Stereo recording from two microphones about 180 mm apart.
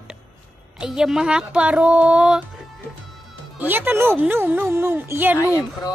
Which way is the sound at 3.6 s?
10° right (ahead or behind).